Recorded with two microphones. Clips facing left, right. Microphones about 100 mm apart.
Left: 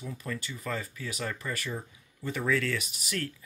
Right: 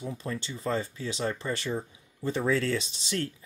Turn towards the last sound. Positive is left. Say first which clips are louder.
# right 3 dB
turn(degrees=-25)  # may be behind; listen again after turning